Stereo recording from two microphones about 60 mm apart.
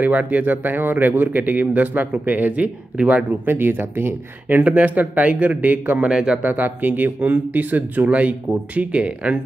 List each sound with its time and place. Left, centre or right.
0.0 s speech: right
3.3 s speech: right
6.0 s speech: centre
6.4 s speech: right